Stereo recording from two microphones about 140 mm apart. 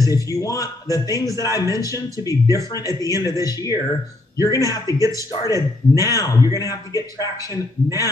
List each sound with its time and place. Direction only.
0.0 s a man's voice: 25° left (ahead or behind)